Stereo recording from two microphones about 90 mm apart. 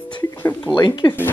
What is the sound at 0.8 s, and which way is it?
Speech, 55° left (ahead or behind).